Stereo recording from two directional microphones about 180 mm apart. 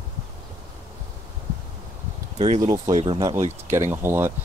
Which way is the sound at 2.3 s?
40° right (ahead or behind).